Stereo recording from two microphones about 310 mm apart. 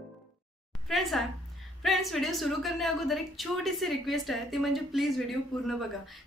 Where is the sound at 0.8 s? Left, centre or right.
Centre.